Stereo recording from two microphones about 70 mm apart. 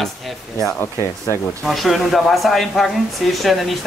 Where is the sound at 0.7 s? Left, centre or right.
Left.